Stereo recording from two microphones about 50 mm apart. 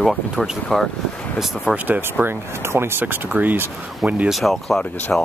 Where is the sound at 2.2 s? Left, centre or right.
Right.